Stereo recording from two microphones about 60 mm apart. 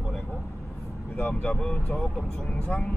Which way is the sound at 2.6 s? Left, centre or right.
Left.